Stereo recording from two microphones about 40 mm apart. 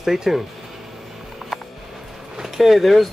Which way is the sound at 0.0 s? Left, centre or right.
Centre.